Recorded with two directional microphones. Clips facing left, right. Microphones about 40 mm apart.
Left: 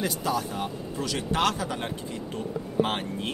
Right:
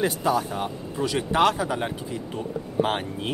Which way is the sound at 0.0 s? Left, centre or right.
Right.